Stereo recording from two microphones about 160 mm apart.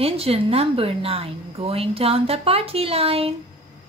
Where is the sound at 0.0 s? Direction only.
35° right (ahead or behind).